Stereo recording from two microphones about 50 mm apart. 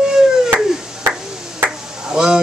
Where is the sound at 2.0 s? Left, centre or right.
Centre.